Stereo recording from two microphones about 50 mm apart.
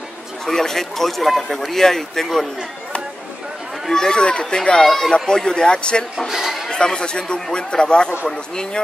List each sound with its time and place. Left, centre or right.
0.5 s speech: centre
3.8 s speech: centre
6.2 s speech: centre
6.7 s speech: centre